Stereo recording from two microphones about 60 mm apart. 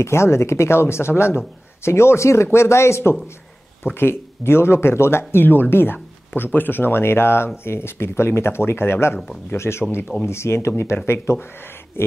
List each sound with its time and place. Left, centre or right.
0.0 s speech: left